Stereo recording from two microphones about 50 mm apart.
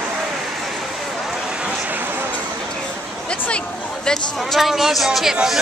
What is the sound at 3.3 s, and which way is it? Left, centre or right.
Speech, left.